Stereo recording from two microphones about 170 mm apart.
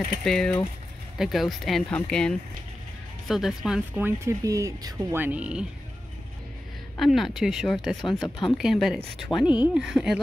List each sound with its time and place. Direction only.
0.2 s speech: 5° left (ahead or behind)
7.0 s speech: centre (ahead or behind)
8.0 s speech: 25° left (ahead or behind)
8.5 s speech: centre (ahead or behind)